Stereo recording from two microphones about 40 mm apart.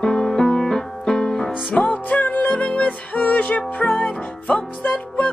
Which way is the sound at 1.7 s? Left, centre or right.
Left.